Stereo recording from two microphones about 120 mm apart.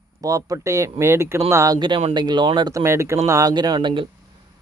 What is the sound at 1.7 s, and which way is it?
Speech, 40° right (ahead or behind).